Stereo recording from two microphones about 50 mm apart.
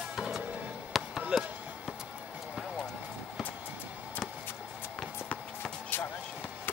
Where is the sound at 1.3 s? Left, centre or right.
Centre.